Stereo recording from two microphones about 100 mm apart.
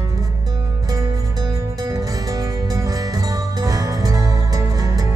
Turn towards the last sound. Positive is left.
turn(degrees=-35)  # may be behind; listen again after turning